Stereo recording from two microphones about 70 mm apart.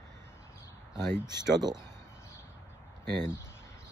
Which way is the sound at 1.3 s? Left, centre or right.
Right.